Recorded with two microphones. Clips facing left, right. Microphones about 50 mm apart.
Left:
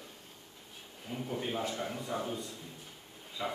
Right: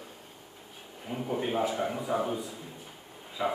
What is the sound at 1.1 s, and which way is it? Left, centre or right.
A man's voice, centre.